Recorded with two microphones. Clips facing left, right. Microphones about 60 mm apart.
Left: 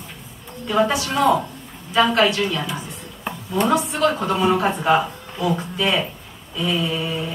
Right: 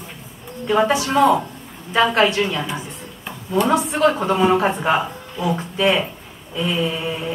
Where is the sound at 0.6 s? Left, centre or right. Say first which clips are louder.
Right 2 dB; right.